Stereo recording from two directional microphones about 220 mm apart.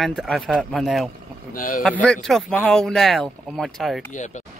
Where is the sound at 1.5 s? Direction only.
40° left (ahead or behind).